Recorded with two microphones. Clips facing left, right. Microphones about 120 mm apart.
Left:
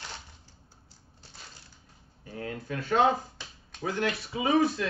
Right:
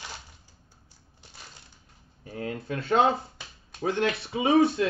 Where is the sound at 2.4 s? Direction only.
25° right (ahead or behind).